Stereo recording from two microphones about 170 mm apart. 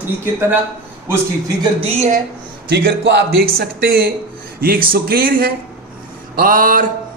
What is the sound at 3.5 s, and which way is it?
A man's voice, 60° right (ahead or behind).